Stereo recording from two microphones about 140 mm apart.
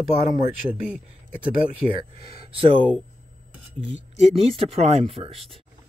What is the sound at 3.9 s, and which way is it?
Speech, 50° right (ahead or behind).